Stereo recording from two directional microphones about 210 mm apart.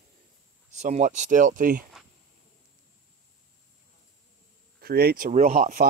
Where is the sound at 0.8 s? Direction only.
35° right (ahead or behind).